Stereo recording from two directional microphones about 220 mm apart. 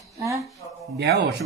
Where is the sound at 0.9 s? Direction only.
50° right (ahead or behind).